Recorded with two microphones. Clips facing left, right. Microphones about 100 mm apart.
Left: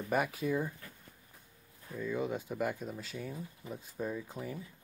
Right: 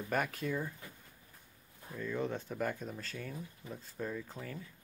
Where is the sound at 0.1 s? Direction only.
5° left (ahead or behind).